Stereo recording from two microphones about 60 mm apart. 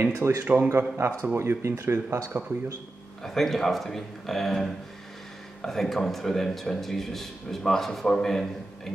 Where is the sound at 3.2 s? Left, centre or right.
Centre.